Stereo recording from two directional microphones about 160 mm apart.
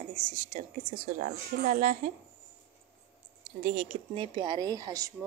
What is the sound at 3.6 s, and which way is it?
Speech, 50° right (ahead or behind).